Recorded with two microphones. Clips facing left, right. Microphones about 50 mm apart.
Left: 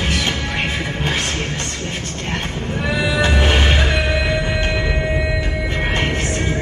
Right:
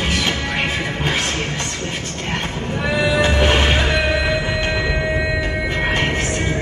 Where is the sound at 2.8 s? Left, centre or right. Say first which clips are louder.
Right 1 dB; centre.